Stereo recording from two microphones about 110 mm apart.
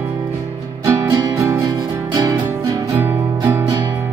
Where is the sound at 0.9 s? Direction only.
30° right (ahead or behind).